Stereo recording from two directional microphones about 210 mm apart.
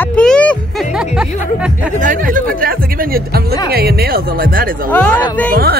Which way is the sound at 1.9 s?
40° right (ahead or behind).